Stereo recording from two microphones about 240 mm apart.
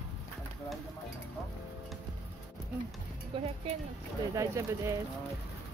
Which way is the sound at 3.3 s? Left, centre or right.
Right.